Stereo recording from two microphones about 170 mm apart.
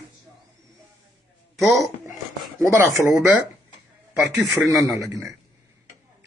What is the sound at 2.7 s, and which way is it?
Speech, 15° right (ahead or behind).